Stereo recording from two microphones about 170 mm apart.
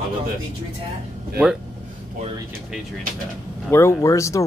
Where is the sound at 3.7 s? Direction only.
15° left (ahead or behind).